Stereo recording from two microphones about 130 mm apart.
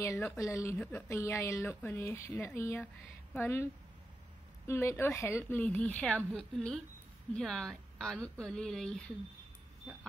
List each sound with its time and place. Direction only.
0.0 s a woman's voice: 20° left (ahead or behind)
4.6 s a woman's voice: 20° left (ahead or behind)